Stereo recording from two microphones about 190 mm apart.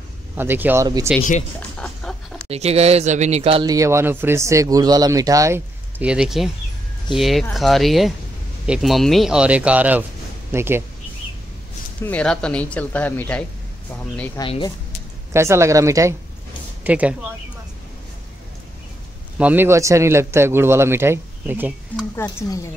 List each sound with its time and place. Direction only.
0.4 s speech: 10° right (ahead or behind)
1.6 s a sound: 5° left (ahead or behind)
2.4 s speech: 35° right (ahead or behind)
3.7 s speech: 15° right (ahead or behind)
12.0 s speech: 5° left (ahead or behind)
14.4 s speech: 25° left (ahead or behind)
15.3 s speech: 15° right (ahead or behind)
19.3 s speech: 10° right (ahead or behind)
22.1 s speech: 10° left (ahead or behind)